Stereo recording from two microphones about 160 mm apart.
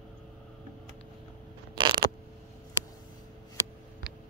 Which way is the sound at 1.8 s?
30° right (ahead or behind).